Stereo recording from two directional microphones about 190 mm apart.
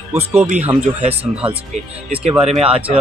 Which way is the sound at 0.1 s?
15° right (ahead or behind).